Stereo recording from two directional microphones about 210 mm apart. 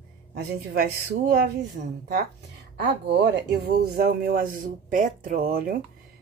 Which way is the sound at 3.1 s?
55° right (ahead or behind).